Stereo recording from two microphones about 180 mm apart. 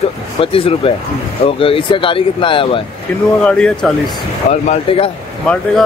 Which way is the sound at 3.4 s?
5° left (ahead or behind).